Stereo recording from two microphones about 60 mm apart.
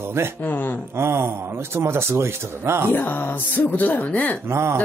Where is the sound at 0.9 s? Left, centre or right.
Right.